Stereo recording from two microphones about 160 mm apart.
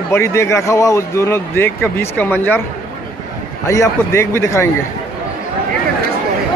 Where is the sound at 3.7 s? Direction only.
15° left (ahead or behind).